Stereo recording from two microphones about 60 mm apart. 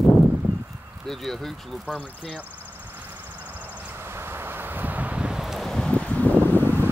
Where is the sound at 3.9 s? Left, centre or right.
Right.